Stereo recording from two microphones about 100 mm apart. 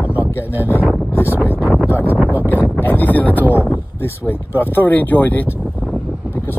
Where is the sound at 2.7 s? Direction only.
20° left (ahead or behind).